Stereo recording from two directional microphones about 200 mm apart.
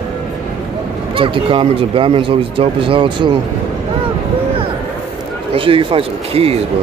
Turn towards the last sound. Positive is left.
turn(degrees=-30)  # may be behind; listen again after turning